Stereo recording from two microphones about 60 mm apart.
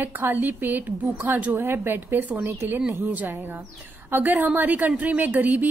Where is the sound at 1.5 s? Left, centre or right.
Right.